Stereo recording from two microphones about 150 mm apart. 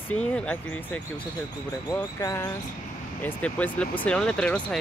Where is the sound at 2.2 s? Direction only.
20° left (ahead or behind).